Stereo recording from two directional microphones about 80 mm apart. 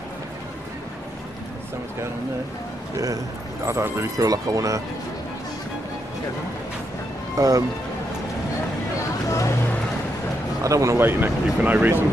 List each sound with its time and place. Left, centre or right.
3.6 s speech: right
7.3 s speech: right
10.6 s speech: right
11.0 s speech: right